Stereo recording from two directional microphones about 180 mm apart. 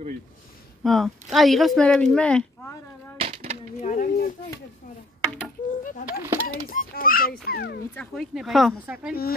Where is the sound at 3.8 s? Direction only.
50° left (ahead or behind).